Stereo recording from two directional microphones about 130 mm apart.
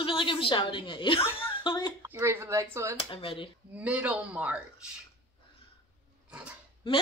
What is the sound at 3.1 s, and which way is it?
Speech, 45° left (ahead or behind).